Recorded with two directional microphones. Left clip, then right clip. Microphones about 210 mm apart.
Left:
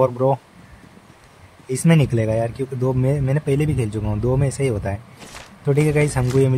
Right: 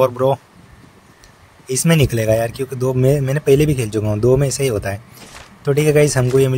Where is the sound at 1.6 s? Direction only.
15° right (ahead or behind).